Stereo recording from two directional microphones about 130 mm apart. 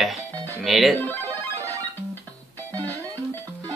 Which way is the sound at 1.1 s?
15° left (ahead or behind).